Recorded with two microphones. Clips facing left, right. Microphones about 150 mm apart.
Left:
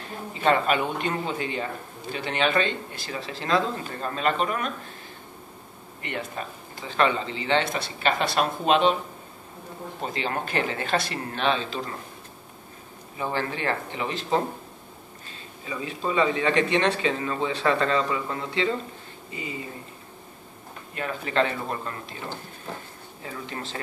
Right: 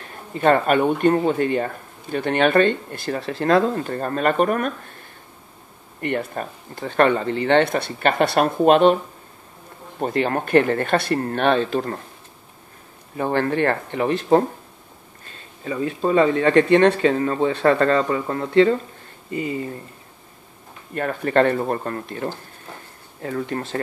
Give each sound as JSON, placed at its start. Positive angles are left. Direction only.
{"t": 0.3, "sound": "speech", "side_deg": -55}
{"t": 5.9, "sound": "speech", "side_deg": -50}
{"t": 10.0, "sound": "speech", "side_deg": -55}
{"t": 13.2, "sound": "speech", "side_deg": -55}
{"t": 20.9, "sound": "speech", "side_deg": -50}